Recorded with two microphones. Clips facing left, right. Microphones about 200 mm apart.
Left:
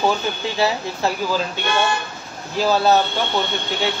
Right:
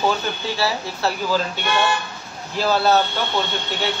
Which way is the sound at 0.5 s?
20° left (ahead or behind).